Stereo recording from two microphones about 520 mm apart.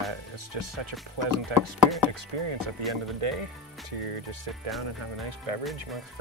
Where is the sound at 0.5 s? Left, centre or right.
Right.